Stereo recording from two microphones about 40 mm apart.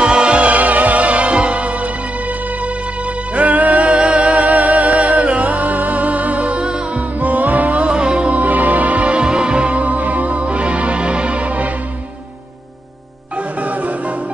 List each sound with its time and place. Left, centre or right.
0.0 s music: right
3.3 s music: right
7.2 s music: right
8.4 s music: right
13.6 s music: right